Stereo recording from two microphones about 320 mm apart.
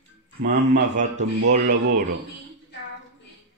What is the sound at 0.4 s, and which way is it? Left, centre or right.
Speech, right.